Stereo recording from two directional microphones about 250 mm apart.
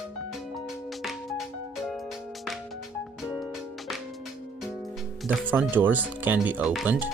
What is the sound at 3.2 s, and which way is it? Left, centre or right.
Music, centre.